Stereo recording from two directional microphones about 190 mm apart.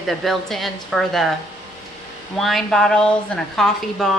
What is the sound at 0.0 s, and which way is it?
A woman's voice, centre (ahead or behind).